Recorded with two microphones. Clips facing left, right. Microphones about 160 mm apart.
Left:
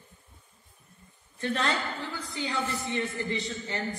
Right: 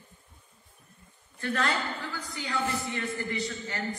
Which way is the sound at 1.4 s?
20° left (ahead or behind).